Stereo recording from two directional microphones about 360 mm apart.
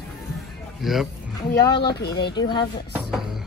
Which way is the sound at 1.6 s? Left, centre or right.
Centre.